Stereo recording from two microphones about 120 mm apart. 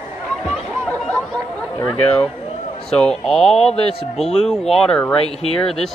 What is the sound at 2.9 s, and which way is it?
Speech, 5° left (ahead or behind).